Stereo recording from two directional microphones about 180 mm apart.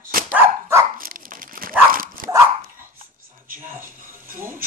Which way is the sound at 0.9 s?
50° right (ahead or behind).